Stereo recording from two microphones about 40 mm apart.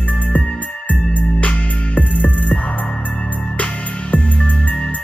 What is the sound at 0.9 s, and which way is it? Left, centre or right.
Music, left.